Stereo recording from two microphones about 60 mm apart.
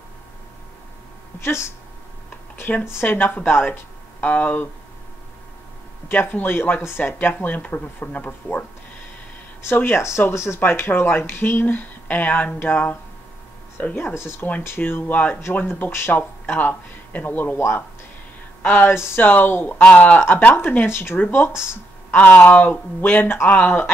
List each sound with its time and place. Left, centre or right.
1.4 s speech: left
4.2 s speech: left
6.0 s speech: left
9.8 s speech: left
10.6 s speech: left
19.8 s speech: left
20.8 s speech: left